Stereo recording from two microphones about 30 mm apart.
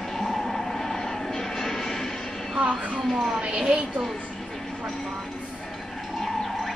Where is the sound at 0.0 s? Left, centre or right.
Centre.